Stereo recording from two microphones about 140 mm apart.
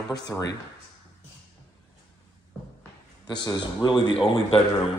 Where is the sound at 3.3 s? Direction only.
30° left (ahead or behind).